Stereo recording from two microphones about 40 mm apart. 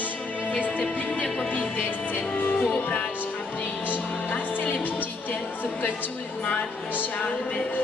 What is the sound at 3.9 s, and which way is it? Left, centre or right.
Music, left.